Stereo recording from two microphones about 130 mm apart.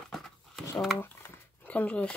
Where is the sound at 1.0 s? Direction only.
15° left (ahead or behind).